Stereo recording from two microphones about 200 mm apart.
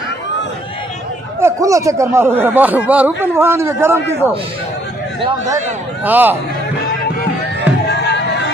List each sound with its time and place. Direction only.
1.4 s speech: 15° right (ahead or behind)
6.0 s speech: 10° right (ahead or behind)
7.9 s a sound: 60° left (ahead or behind)